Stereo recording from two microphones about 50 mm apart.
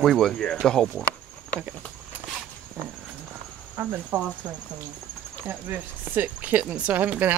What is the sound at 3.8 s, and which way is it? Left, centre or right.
Speech, right.